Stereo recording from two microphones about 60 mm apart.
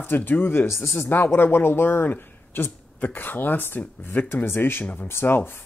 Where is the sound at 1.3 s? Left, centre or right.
Left.